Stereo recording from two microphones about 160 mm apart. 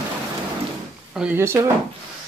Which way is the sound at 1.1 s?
10° right (ahead or behind).